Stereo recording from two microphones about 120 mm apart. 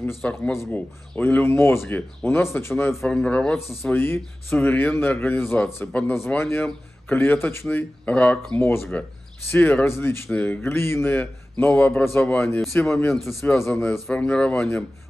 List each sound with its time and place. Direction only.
0.2 s speech: 20° left (ahead or behind)
3.1 s speech: 10° left (ahead or behind)
13.1 s a man's voice: centre (ahead or behind)
13.4 s speech: 20° left (ahead or behind)
13.9 s a man's voice: centre (ahead or behind)